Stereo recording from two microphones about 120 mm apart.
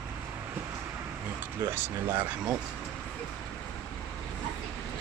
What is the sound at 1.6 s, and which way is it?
Speech, 20° right (ahead or behind).